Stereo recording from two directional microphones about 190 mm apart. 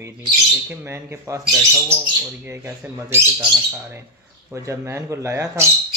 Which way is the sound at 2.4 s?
10° right (ahead or behind).